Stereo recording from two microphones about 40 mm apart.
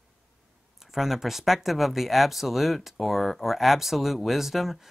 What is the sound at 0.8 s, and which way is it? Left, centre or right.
Speech, centre.